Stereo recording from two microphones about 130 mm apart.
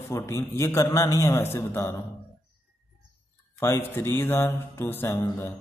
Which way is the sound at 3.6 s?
20° left (ahead or behind).